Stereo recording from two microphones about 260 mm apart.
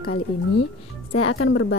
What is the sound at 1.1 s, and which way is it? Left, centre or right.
Speech, left.